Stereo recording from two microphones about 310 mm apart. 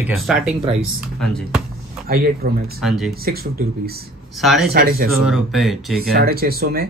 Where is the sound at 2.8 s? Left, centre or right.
Centre.